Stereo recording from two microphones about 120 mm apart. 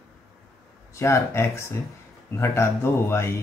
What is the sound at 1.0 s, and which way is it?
Speech, 25° left (ahead or behind).